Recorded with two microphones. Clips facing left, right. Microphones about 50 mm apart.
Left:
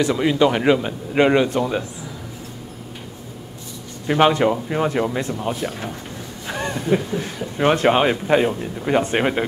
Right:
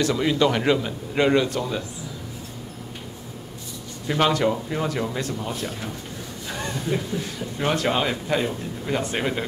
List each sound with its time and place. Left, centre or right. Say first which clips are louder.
0.0 s speech: left 3 dB; centre
4.1 s speech: left 5 dB; left
6.5 s a sound: left 6 dB; left
7.5 s speech: left 7 dB; left